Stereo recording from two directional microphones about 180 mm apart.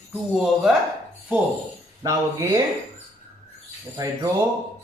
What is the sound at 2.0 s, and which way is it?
Speech, 20° right (ahead or behind).